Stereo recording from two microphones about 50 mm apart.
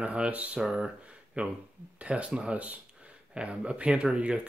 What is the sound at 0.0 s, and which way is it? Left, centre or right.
Speech, right.